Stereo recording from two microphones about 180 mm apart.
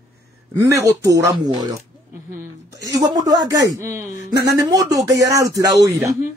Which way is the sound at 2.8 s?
20° right (ahead or behind).